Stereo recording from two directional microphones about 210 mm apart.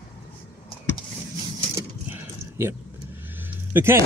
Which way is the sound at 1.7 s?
10° right (ahead or behind).